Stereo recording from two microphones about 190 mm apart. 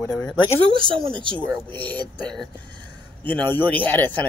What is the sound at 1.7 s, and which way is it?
Speech, 10° left (ahead or behind).